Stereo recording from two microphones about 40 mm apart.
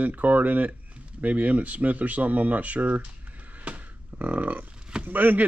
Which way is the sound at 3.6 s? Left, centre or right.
Right.